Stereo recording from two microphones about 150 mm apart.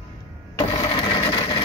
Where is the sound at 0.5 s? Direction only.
30° left (ahead or behind).